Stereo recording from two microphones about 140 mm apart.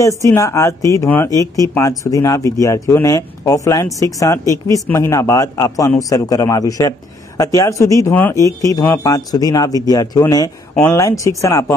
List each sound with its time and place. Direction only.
0.0 s speech: 20° left (ahead or behind)